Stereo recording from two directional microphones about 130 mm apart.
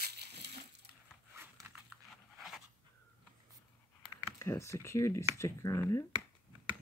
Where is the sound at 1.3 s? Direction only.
20° right (ahead or behind).